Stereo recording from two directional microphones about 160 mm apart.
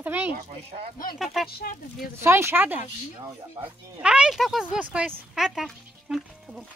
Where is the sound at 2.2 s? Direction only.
15° right (ahead or behind).